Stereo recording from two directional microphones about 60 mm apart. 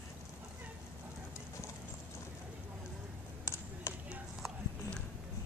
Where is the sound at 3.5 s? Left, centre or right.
Left.